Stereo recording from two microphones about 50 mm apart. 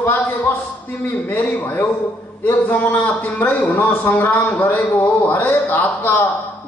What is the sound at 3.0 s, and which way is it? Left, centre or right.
A man's voice, left.